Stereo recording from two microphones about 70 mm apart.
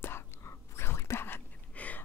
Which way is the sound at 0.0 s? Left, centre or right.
Left.